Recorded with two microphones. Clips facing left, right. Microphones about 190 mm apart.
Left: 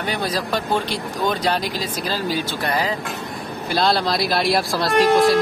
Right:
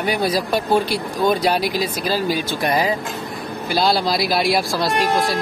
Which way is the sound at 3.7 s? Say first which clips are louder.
Right 1 dB; centre (ahead or behind).